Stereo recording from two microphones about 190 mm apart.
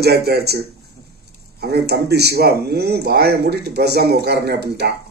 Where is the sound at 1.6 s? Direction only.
60° right (ahead or behind).